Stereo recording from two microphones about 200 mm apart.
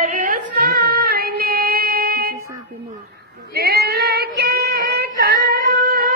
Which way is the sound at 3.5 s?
50° right (ahead or behind).